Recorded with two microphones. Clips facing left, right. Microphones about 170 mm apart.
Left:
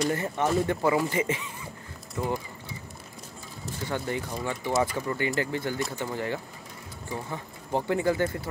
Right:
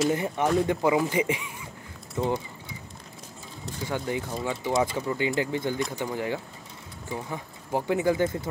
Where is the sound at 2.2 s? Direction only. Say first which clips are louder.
Right 3 dB; 20° right (ahead or behind).